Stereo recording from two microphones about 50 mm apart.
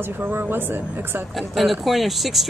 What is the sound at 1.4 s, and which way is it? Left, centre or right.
Speech, centre.